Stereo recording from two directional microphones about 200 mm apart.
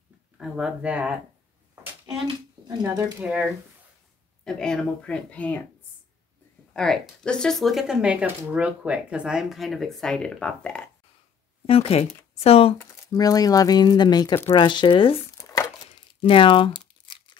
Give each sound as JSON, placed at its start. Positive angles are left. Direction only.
{"t": 0.4, "sound": "speech", "side_deg": 0}
{"t": 1.8, "sound": "a sound", "side_deg": -25}
{"t": 2.8, "sound": "speech", "side_deg": -15}
{"t": 4.5, "sound": "speech", "side_deg": 5}
{"t": 6.7, "sound": "speech", "side_deg": 5}
{"t": 11.6, "sound": "speech", "side_deg": 30}
{"t": 13.1, "sound": "speech", "side_deg": 20}
{"t": 14.4, "sound": "a sound", "side_deg": 25}